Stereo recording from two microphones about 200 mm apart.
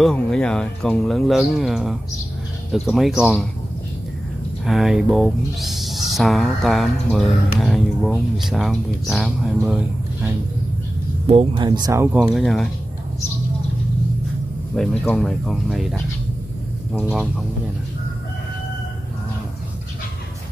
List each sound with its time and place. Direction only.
0.0 s speech: 5° left (ahead or behind)
4.6 s speech: centre (ahead or behind)
11.2 s speech: 25° right (ahead or behind); by 12.6 s centre (ahead or behind)
14.8 s speech: 5° left (ahead or behind)
17.0 s speech: centre (ahead or behind)